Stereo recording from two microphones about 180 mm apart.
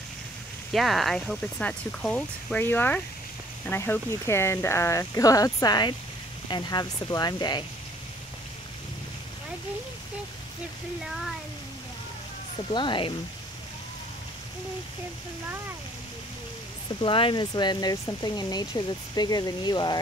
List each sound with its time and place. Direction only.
0.7 s speech: centre (ahead or behind); by 7.6 s 25° left (ahead or behind)
12.7 s speech: 25° left (ahead or behind)
17.0 s speech: 30° left (ahead or behind)